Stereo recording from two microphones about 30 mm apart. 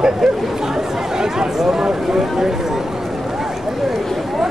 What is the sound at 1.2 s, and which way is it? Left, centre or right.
Speech, right.